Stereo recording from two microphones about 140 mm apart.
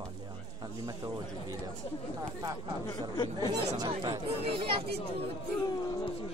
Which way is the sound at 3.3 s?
30° right (ahead or behind).